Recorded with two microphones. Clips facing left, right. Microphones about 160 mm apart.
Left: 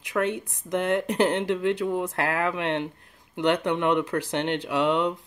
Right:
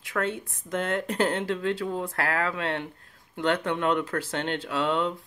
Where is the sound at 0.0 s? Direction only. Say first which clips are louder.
Left 3 dB; 15° left (ahead or behind).